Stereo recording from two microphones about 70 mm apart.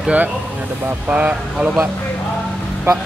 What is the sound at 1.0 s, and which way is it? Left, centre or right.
Speech, centre.